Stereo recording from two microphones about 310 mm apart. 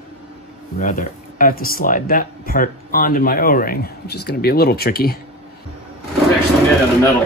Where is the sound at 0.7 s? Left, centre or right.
Left.